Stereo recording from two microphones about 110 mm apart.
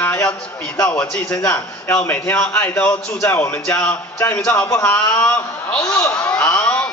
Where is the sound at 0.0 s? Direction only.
15° left (ahead or behind).